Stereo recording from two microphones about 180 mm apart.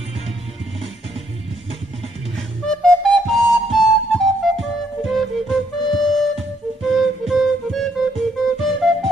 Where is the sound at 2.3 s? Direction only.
5° left (ahead or behind).